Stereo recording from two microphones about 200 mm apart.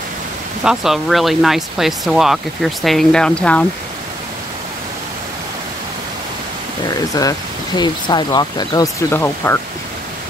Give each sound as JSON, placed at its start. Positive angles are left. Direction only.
{"t": 0.7, "sound": "speech", "side_deg": 0}
{"t": 6.9, "sound": "speech", "side_deg": 20}